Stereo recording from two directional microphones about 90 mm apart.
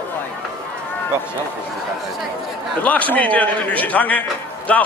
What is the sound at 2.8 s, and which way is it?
A man's voice, 15° left (ahead or behind).